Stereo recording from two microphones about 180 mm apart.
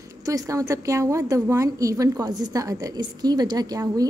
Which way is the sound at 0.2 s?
20° right (ahead or behind).